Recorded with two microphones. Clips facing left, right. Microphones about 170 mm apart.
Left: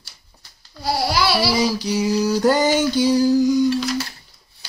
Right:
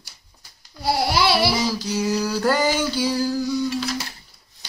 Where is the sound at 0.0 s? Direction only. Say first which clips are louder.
Even; 15° right (ahead or behind).